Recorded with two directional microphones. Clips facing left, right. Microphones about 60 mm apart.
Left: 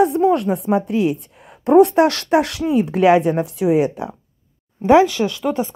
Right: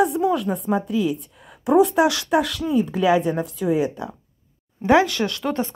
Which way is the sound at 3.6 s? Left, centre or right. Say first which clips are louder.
Left 5 dB; left.